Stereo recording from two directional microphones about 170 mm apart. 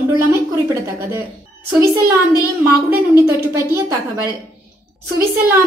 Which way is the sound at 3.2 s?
15° right (ahead or behind).